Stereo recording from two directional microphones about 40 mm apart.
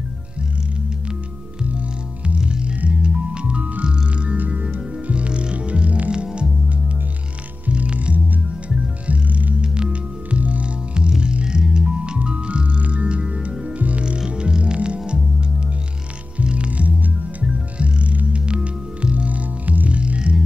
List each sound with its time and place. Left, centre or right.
1.8 s music: right
4.4 s music: right
4.6 s music: right
6.1 s music: right
7.6 s music: right
9.6 s music: right
14.0 s music: right
16.4 s music: right
20.0 s music: right